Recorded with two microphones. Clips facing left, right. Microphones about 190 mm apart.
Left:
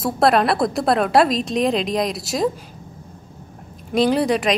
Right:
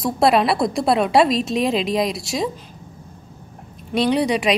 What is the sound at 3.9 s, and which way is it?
Speech, centre (ahead or behind).